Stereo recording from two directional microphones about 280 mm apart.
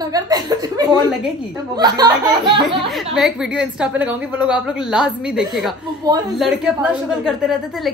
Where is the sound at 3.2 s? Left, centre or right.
Centre.